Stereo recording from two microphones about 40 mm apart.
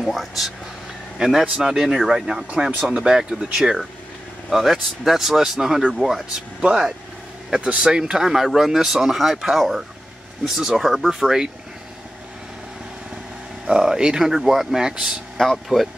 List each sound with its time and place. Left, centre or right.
0.0 s speech: centre
1.1 s a man's voice: centre
4.5 s speech: centre
6.6 s speech: right
13.7 s speech: centre
14.2 s speech: centre
14.9 s speech: right
15.3 s speech: centre